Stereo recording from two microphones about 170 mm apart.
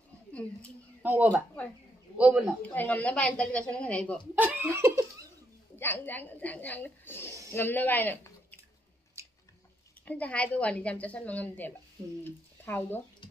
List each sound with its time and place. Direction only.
0.3 s speech: 5° left (ahead or behind)
1.0 s a woman's voice: 10° right (ahead or behind)
2.6 s a woman's voice: 10° left (ahead or behind)
4.4 s laughter: 10° right (ahead or behind)
5.8 s a woman's voice: 10° left (ahead or behind)
10.0 s a woman's voice: 10° left (ahead or behind)